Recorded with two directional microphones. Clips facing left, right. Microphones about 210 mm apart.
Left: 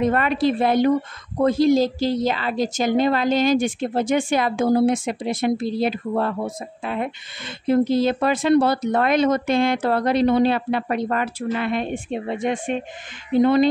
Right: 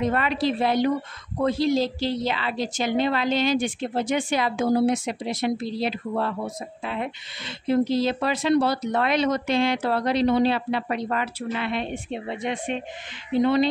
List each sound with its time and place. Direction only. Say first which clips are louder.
0.0 s a woman's voice: left 4 dB; 50° left (ahead or behind)